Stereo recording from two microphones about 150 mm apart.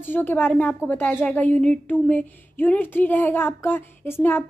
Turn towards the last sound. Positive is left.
turn(degrees=15)  # may be behind; listen again after turning